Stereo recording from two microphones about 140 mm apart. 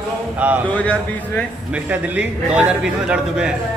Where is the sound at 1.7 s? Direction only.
10° right (ahead or behind).